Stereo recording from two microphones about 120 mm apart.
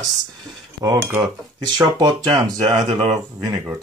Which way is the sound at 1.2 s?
35° right (ahead or behind).